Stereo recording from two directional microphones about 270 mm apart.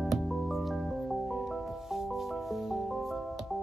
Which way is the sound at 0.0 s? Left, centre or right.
Centre.